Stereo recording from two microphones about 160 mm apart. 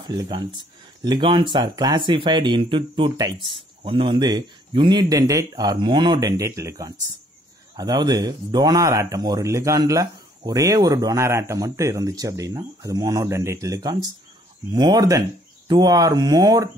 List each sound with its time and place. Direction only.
0.0 s speech: 25° right (ahead or behind)